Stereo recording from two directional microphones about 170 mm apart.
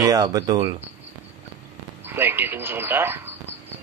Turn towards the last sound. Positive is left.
turn(degrees=-15)  # may be behind; listen again after turning